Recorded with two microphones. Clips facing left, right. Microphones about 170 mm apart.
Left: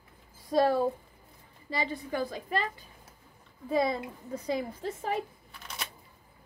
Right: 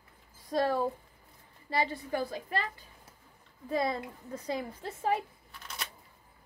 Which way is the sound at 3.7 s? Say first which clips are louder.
Left 3 dB; 10° left (ahead or behind).